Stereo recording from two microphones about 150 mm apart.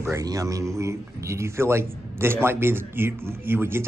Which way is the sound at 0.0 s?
20° right (ahead or behind).